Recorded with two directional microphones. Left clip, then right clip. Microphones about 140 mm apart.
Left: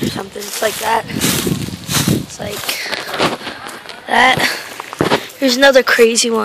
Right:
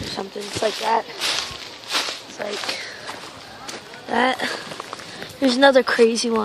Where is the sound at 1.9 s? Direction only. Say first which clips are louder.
Left 6 dB; 80° left.